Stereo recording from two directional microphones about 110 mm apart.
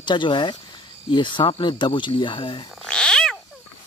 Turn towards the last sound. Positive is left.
turn(degrees=5)  # may be behind; listen again after turning